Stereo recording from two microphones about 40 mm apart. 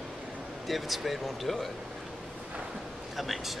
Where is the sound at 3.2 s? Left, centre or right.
Centre.